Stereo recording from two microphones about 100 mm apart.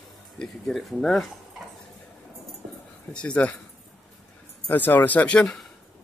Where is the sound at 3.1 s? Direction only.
10° left (ahead or behind).